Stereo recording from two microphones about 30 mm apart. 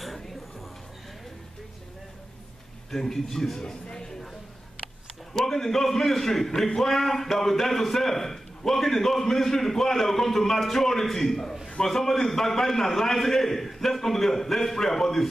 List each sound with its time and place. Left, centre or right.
2.9 s a man's voice: centre
3.5 s a sound: left
5.3 s a man's voice: centre